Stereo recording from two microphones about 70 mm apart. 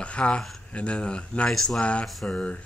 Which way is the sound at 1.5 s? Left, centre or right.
Centre.